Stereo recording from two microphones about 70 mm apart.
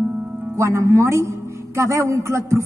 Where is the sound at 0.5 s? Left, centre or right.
Right.